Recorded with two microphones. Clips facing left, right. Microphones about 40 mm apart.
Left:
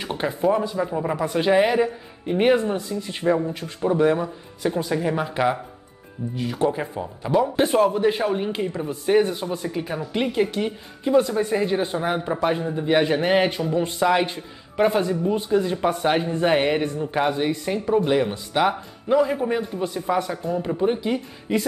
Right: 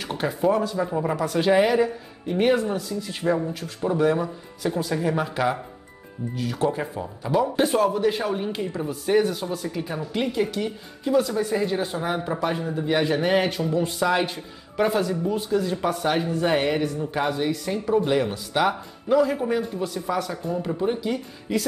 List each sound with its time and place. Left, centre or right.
0.0 s a sound: centre
0.5 s speech: left
0.7 s speech: centre
1.1 s speech: centre
20.4 s speech: centre